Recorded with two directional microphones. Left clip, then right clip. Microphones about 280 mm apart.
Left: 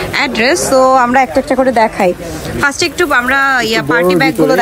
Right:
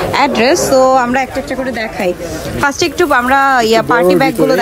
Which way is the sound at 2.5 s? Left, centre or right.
Centre.